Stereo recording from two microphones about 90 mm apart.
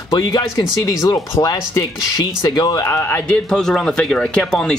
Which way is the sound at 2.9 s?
25° left (ahead or behind).